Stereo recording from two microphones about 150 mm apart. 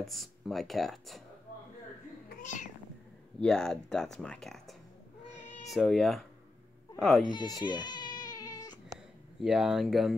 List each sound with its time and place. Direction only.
0.0 s speech: centre (ahead or behind)
2.4 s cat: 55° left (ahead or behind)
3.3 s speech: 5° left (ahead or behind)
7.2 s cat: 30° left (ahead or behind)
9.4 s speech: centre (ahead or behind)